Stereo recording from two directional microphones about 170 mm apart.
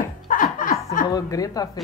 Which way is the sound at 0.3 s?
50° left (ahead or behind).